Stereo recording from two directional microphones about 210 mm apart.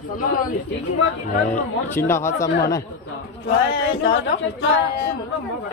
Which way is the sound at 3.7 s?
50° left (ahead or behind).